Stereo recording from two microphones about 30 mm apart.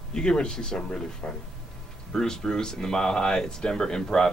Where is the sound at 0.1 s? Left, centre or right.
Left.